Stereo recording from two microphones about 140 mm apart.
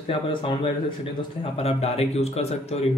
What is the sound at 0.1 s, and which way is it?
Speech, 40° left (ahead or behind).